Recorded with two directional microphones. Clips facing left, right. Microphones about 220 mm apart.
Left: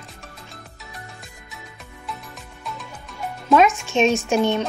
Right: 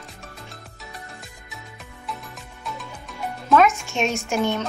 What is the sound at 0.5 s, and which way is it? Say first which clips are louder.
Music: even; centre (ahead or behind).